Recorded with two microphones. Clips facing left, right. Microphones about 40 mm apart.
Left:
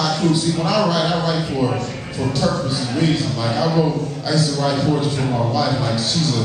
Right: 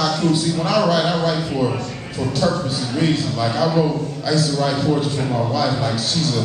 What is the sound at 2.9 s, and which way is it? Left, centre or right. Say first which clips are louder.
A man's voice: right 1 dB; centre.